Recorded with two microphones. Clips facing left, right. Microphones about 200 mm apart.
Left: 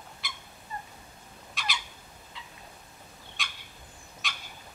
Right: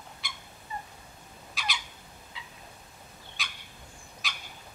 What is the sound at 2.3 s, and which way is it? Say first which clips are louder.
Cat: even; centre (ahead or behind).